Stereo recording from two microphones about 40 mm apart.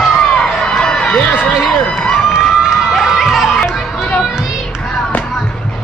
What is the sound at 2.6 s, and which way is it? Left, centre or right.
Run, centre.